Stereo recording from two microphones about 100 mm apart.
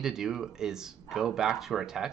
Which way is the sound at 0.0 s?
5° right (ahead or behind).